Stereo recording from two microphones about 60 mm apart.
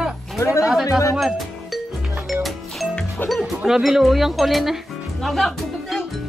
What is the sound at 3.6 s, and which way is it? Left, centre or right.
Speech, centre.